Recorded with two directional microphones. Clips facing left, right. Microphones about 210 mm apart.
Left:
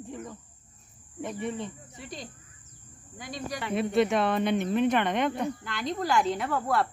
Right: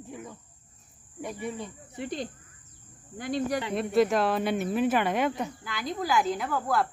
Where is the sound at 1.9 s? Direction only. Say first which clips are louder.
Right 8 dB; 60° right (ahead or behind).